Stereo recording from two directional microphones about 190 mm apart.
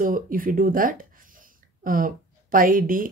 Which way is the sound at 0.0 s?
45° right (ahead or behind).